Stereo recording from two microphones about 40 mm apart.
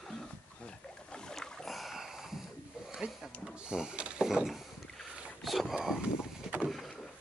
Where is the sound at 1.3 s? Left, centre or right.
Centre.